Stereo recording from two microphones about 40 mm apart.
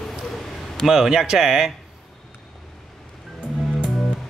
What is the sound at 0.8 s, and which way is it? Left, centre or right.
Speech, centre.